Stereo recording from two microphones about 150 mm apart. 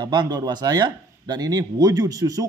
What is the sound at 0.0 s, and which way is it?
Speech, 30° right (ahead or behind).